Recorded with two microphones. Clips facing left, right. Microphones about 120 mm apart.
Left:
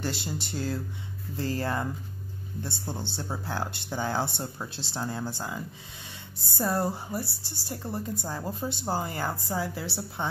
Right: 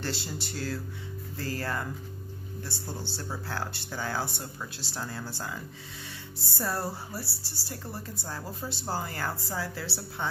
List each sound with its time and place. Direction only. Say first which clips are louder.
0.0 s a woman's voice: left 2 dB; 15° left (ahead or behind)